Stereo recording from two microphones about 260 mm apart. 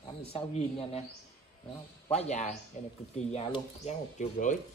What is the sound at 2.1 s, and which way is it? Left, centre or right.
Speech, left.